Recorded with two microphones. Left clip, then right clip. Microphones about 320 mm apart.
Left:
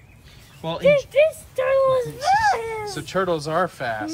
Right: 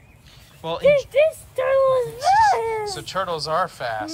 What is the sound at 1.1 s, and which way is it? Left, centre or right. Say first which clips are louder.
A child's voice: even; right.